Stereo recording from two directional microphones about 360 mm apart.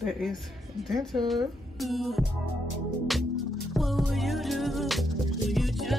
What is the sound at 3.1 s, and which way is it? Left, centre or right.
Music, centre.